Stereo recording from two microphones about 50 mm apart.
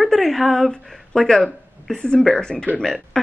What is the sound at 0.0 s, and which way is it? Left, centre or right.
A woman's voice, centre.